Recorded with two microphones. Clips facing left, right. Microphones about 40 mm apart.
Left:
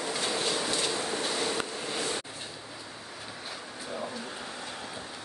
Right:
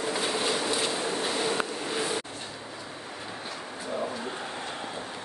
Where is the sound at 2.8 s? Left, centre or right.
Right.